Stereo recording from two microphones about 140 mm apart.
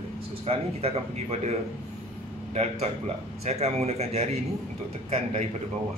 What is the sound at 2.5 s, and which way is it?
Speech, 50° right (ahead or behind).